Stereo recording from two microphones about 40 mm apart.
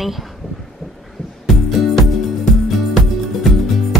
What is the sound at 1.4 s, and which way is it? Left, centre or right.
Music, centre.